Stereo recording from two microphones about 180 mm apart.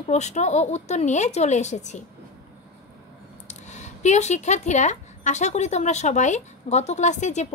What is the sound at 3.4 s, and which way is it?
Speech, 40° left (ahead or behind).